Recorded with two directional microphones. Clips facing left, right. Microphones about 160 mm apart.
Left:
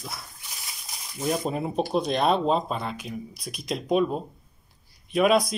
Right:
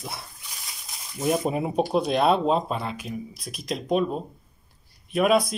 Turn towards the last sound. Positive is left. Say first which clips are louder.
# even
turn(degrees=0)  # may be behind; listen again after turning